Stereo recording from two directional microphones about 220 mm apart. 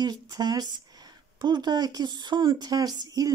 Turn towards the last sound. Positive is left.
turn(degrees=-15)  # may be behind; listen again after turning